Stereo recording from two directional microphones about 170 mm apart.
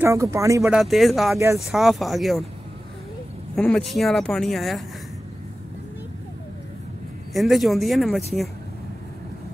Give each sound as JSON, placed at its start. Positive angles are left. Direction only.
{"t": 0.0, "sound": "speech", "side_deg": -15}
{"t": 0.7, "sound": "speech", "side_deg": 0}
{"t": 3.5, "sound": "speech", "side_deg": 5}
{"t": 7.3, "sound": "speech", "side_deg": 0}